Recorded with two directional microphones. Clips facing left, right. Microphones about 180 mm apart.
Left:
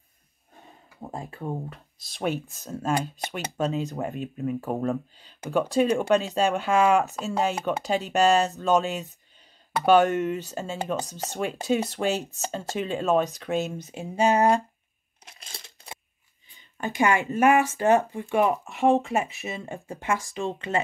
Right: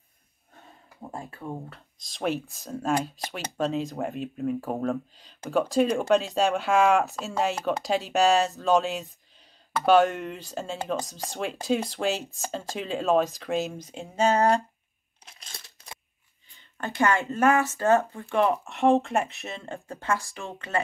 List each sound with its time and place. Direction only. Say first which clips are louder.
1.7 s speech: left 4 dB; 5° left (ahead or behind)
14.0 s speech: left 1 dB; 15° left (ahead or behind)
16.5 s speech: left 2 dB; 15° left (ahead or behind)
18.3 s speech: left 1 dB; 5° left (ahead or behind)